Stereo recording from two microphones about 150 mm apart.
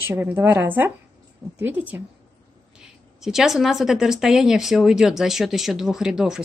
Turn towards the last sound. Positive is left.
turn(degrees=-5)  # may be behind; listen again after turning